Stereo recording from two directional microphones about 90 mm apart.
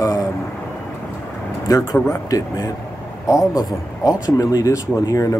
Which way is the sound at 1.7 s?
30° left (ahead or behind).